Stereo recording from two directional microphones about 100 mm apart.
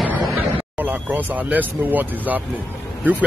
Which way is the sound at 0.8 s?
20° right (ahead or behind).